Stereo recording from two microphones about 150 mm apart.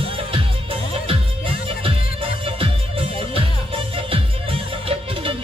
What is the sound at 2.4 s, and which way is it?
Music, 35° right (ahead or behind).